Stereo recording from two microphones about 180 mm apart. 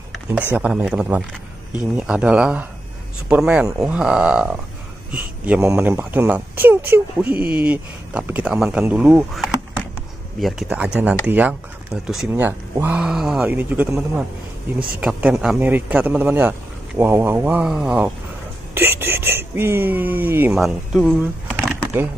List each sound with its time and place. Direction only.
0.5 s a man's voice: 5° right (ahead or behind)
7.3 s speech: 55° right (ahead or behind)
7.6 s a man's voice: 10° right (ahead or behind)
21.2 s a sound: 5° right (ahead or behind)